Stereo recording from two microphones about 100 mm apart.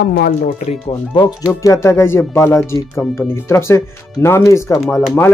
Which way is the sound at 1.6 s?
30° left (ahead or behind).